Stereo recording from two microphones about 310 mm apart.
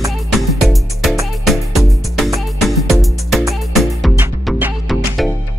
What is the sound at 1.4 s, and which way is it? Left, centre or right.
Music, centre.